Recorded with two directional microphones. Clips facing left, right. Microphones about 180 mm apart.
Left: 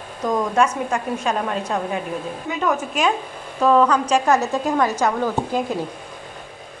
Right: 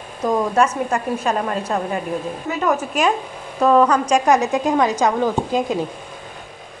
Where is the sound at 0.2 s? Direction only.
10° right (ahead or behind).